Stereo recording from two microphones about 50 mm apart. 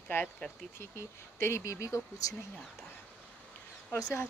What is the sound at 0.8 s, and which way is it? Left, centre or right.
A woman's voice, left.